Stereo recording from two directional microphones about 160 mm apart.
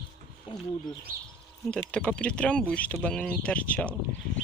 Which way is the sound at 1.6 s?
5° left (ahead or behind).